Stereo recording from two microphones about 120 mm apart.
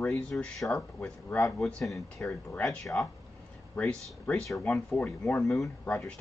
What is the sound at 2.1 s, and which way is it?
Speech, 15° left (ahead or behind).